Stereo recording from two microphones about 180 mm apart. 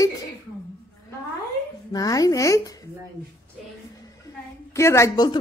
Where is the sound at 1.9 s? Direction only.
20° left (ahead or behind).